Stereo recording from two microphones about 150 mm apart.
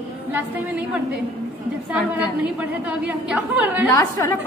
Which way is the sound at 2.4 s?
10° right (ahead or behind).